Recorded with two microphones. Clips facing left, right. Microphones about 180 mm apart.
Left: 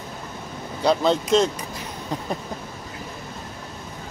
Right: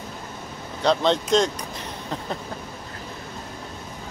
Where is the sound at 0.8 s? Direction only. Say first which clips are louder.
Left 1 dB; 5° left (ahead or behind).